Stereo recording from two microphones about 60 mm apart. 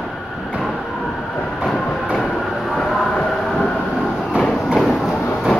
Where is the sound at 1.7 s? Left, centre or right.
Centre.